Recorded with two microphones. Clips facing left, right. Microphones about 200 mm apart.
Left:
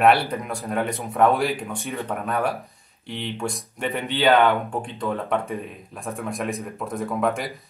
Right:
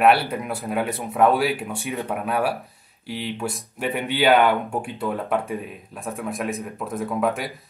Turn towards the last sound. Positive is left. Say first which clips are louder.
# even
turn(degrees=0)  # may be behind; listen again after turning